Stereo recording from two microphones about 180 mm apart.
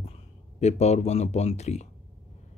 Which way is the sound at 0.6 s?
40° left (ahead or behind).